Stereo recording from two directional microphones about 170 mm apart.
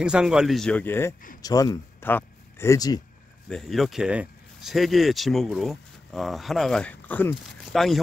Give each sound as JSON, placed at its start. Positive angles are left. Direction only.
{"t": 0.0, "sound": "speech", "side_deg": -5}
{"t": 3.4, "sound": "speech", "side_deg": 0}